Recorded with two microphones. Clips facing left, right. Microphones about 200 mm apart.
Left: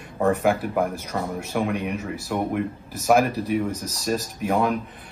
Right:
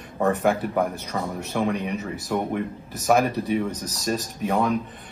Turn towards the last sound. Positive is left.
turn(degrees=0)  # may be behind; listen again after turning